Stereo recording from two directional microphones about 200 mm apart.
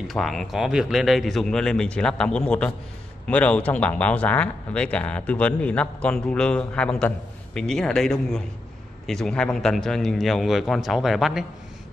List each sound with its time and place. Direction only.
0.1 s speech: centre (ahead or behind)